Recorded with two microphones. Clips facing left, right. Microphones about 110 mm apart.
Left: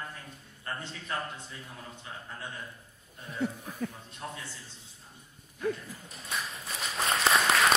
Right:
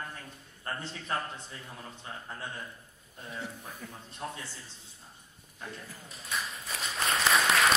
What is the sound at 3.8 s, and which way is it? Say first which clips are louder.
Speech: left 13 dB; 65° left (ahead or behind).